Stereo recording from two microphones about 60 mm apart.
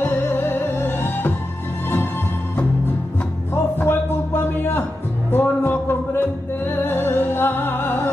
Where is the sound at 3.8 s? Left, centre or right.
Left.